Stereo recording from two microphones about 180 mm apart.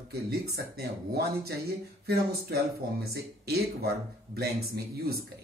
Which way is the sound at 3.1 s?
60° right (ahead or behind).